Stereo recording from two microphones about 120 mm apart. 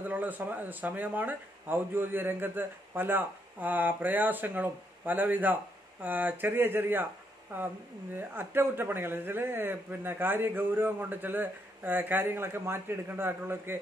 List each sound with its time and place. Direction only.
0.0 s speech: 15° right (ahead or behind)